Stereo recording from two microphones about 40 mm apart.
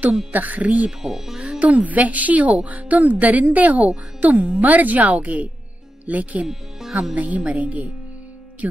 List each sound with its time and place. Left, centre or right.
0.3 s speech: right
1.0 s speech: centre
1.6 s a woman's voice: right